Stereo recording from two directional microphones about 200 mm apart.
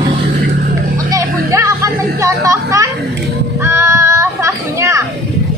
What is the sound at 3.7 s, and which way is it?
Children playing, 15° right (ahead or behind).